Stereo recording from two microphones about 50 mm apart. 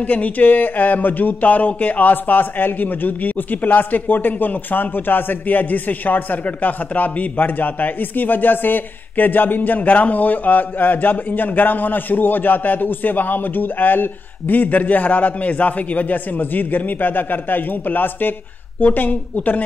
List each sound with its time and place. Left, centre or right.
0.0 s speech: left